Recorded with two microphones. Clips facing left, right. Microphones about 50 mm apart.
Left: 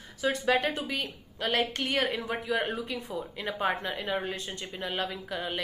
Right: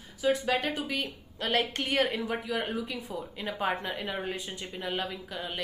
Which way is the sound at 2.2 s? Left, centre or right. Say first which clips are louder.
Left 2 dB; centre.